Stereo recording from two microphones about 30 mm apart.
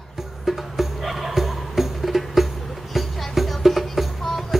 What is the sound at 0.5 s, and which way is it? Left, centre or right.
Music, centre.